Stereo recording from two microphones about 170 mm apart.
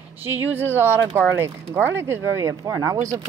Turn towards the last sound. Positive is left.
turn(degrees=-20)  # may be behind; listen again after turning